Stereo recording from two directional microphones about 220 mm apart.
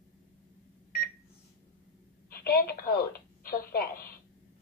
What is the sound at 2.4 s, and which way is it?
A woman's voice, 45° left (ahead or behind).